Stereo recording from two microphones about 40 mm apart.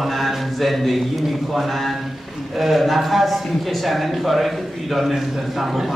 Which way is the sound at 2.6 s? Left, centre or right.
Centre.